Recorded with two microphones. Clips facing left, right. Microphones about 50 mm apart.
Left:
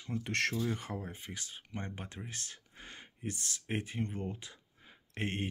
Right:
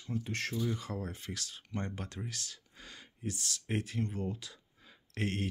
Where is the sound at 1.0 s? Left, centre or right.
Centre.